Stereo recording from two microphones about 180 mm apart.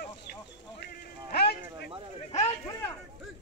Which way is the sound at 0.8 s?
65° left (ahead or behind).